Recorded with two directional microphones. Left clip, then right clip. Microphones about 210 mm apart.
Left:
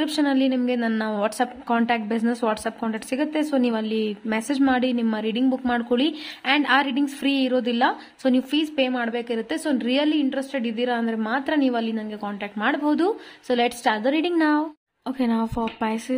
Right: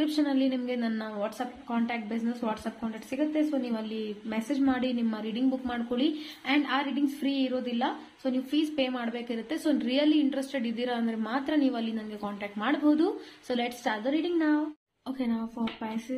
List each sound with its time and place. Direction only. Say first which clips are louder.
0.0 s a woman's voice: left 5 dB; 35° left (ahead or behind)